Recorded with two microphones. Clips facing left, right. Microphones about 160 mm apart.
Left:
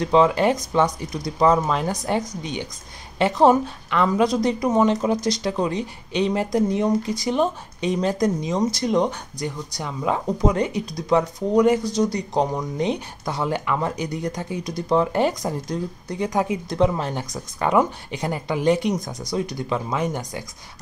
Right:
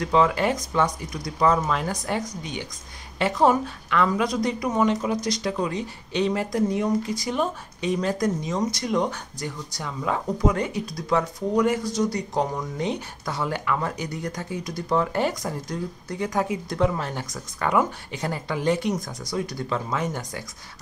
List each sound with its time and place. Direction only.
0.0 s speech: 25° left (ahead or behind)